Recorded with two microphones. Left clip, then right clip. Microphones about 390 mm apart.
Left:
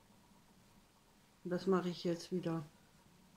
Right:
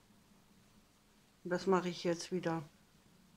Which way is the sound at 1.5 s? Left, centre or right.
Centre.